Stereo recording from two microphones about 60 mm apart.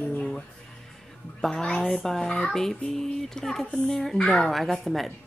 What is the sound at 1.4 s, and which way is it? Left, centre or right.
A woman's voice, centre.